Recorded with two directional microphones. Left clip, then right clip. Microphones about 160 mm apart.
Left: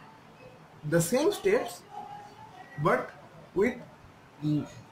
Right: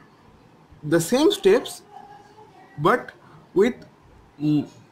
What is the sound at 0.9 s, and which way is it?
Speech, 50° right (ahead or behind).